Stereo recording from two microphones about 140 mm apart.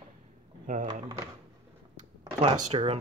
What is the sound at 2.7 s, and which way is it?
Speech, 45° right (ahead or behind).